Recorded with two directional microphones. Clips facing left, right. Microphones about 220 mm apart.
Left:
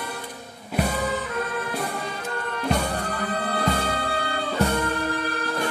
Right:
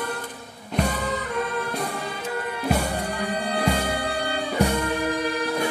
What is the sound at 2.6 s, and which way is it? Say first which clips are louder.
Music: even; 10° right (ahead or behind).